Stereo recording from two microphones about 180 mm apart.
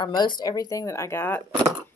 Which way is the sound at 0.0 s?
25° left (ahead or behind).